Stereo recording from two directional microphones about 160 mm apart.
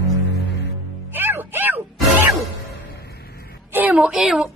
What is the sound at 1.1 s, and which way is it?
Music, 15° right (ahead or behind).